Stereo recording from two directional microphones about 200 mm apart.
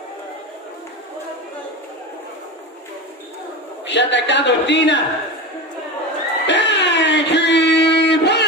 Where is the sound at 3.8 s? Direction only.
60° left (ahead or behind).